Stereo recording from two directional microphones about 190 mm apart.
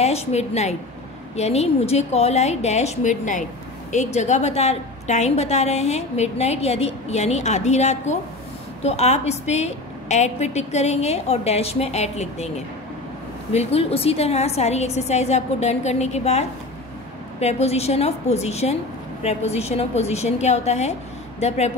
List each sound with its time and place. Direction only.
0.0 s a woman's voice: 35° left (ahead or behind)